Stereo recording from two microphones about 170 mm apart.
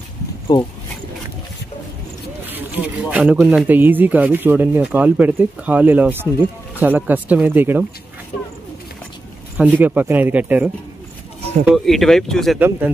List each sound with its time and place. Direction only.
0.5 s speech: 25° left (ahead or behind)
2.4 s speech: 10° right (ahead or behind)
9.6 s speech: 10° right (ahead or behind)
12.5 s speech: 10° right (ahead or behind)